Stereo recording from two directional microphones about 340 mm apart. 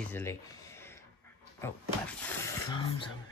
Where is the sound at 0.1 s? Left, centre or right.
Centre.